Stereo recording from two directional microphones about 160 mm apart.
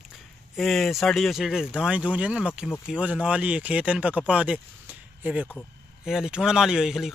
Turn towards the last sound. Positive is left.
turn(degrees=-5)  # may be behind; listen again after turning